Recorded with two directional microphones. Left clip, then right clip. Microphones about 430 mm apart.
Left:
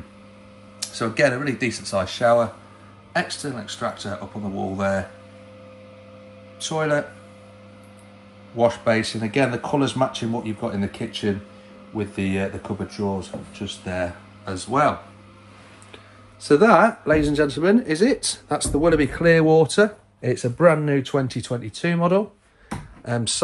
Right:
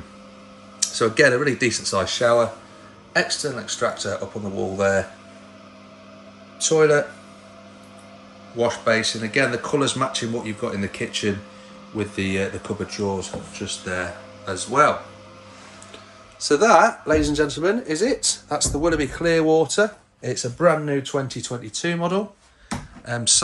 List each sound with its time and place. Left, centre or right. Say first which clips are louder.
0.7 s speech: right 4 dB; centre
6.6 s speech: right 6 dB; centre
8.5 s speech: left 1 dB; centre
16.3 s speech: even; centre